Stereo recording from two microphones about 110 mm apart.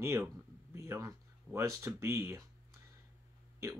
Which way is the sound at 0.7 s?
25° right (ahead or behind).